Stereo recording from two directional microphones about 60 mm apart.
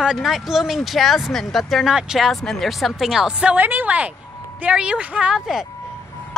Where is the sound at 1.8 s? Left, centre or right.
Centre.